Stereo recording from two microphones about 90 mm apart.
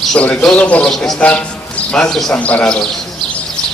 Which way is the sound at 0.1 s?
10° left (ahead or behind).